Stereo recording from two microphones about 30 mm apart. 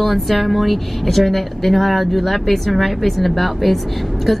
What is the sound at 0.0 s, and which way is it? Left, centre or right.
Speech, centre.